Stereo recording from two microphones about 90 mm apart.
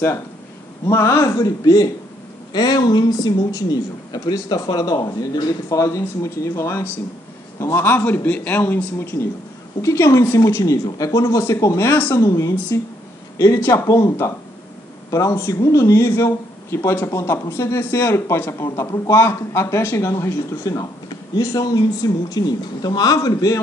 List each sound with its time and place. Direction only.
0.8 s a man's voice: 30° left (ahead or behind)
9.8 s a man's voice: 30° left (ahead or behind)
10.6 s a man's voice: 40° left (ahead or behind)
12.2 s a man's voice: 35° left (ahead or behind)